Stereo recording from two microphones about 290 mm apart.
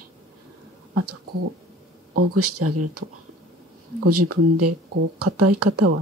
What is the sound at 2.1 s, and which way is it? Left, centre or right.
Speech, right.